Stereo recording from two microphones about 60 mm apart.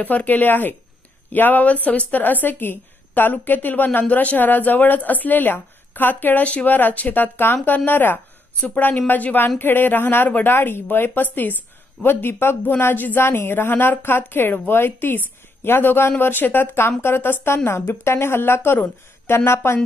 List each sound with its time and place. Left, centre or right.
0.0 s a woman's voice: left